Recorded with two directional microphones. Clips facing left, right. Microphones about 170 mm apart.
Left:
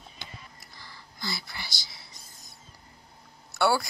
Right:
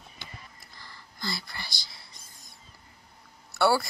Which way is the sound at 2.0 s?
20° left (ahead or behind).